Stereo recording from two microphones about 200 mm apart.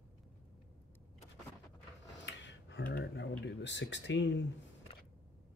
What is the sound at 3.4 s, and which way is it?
Speech, 60° left (ahead or behind).